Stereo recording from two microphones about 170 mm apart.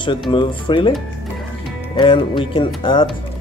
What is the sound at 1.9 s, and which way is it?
Speech, 30° left (ahead or behind).